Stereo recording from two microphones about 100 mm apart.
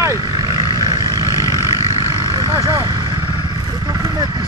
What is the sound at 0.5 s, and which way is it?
Vehicle, 45° right (ahead or behind).